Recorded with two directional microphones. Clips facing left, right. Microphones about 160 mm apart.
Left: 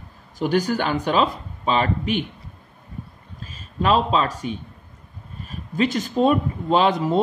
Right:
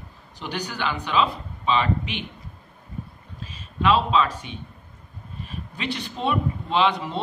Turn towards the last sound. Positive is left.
turn(degrees=45)  # may be behind; listen again after turning